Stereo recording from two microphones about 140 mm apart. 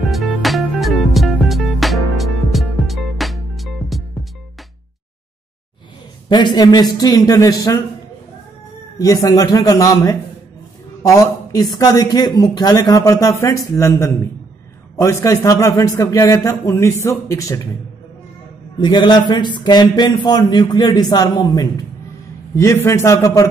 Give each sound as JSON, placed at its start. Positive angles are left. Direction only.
{"t": 0.0, "sound": "music", "side_deg": 0}
{"t": 6.2, "sound": "speech", "side_deg": 30}
{"t": 8.9, "sound": "a man's voice", "side_deg": 25}
{"t": 18.8, "sound": "a man's voice", "side_deg": 30}